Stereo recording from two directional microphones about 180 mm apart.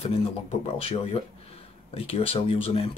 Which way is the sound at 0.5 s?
35° left (ahead or behind).